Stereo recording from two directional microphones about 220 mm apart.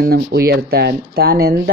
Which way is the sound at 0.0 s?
45° right (ahead or behind).